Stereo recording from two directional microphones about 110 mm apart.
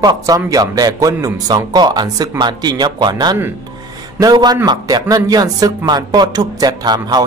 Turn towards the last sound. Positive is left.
turn(degrees=-35)  # may be behind; listen again after turning